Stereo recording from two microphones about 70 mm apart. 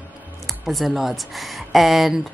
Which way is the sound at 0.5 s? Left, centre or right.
Centre.